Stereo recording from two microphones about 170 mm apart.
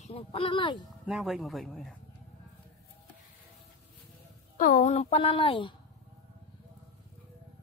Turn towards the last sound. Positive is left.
turn(degrees=30)  # may be behind; listen again after turning